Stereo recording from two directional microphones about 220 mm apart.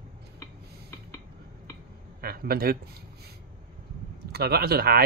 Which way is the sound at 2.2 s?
45° right (ahead or behind).